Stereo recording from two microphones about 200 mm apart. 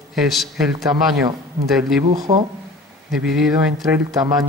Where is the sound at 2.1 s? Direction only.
20° right (ahead or behind).